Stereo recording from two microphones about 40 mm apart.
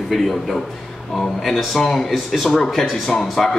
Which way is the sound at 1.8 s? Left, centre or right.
Centre.